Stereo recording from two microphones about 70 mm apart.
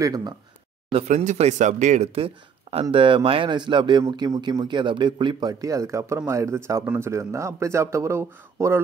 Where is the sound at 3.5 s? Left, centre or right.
Right.